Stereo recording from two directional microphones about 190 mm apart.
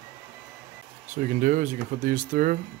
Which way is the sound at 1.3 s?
45° right (ahead or behind).